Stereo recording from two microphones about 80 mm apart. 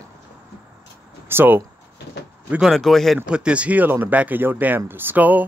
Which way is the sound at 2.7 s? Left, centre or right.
Centre.